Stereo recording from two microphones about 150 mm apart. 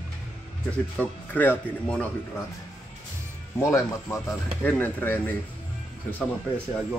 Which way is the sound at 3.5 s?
20° left (ahead or behind).